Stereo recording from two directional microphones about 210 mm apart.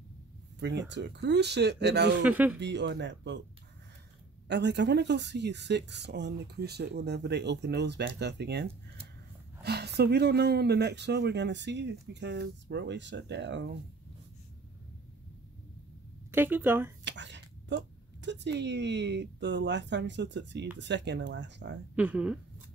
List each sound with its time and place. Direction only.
0.6 s speech: 55° right (ahead or behind)
2.2 s speech: 5° right (ahead or behind)
2.6 s speech: 55° right (ahead or behind)
4.5 s speech: 55° right (ahead or behind)
16.3 s speech: 10° right (ahead or behind)
17.0 s a woman's voice: 55° right (ahead or behind)
21.9 s speech: 5° right (ahead or behind)